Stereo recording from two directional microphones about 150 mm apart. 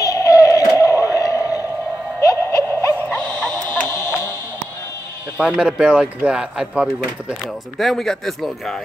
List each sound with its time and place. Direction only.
0.0 s synthetic singing: 20° left (ahead or behind)
2.2 s a sound: 20° left (ahead or behind)
5.4 s a man's voice: 5° right (ahead or behind)